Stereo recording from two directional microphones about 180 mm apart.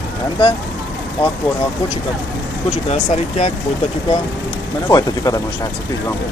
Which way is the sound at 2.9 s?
40° left (ahead or behind).